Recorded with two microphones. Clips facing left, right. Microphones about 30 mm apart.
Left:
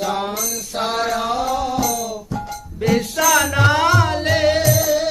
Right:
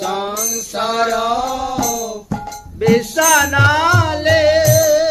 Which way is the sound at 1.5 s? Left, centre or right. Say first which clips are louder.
Even; right.